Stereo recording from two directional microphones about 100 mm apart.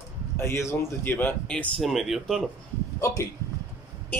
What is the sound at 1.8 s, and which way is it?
Speech, centre (ahead or behind).